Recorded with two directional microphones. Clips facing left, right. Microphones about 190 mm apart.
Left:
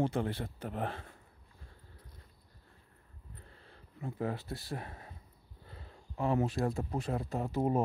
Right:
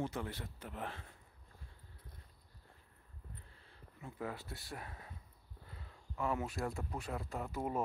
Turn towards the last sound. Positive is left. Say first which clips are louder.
# left 8 dB
turn(degrees=30)  # may be behind; listen again after turning